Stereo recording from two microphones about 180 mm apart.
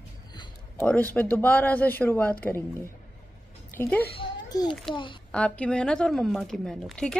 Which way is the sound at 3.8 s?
10° left (ahead or behind).